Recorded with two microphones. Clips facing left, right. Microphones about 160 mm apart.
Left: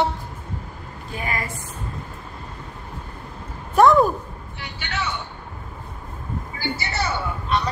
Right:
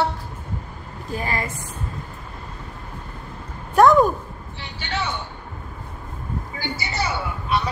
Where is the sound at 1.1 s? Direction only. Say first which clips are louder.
Right 2 dB; 35° right (ahead or behind).